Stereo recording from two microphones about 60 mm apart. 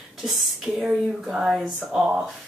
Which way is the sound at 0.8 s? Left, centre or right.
Centre.